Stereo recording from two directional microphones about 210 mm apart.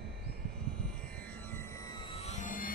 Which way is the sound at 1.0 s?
5° left (ahead or behind).